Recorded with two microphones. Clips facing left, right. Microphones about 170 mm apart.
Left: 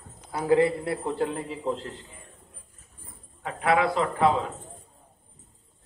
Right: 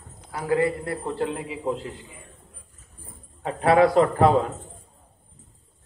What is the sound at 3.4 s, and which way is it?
A man's voice, 35° right (ahead or behind).